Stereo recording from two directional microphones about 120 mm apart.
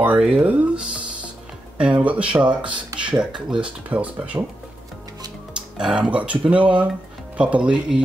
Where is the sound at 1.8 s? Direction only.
10° right (ahead or behind).